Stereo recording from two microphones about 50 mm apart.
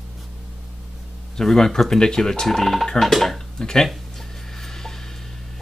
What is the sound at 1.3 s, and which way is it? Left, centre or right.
Speech, centre.